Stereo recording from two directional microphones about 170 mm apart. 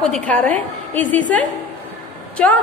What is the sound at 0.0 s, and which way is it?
A woman's voice, 5° left (ahead or behind).